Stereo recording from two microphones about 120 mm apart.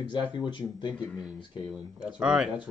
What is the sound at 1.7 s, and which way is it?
Speech, 10° right (ahead or behind).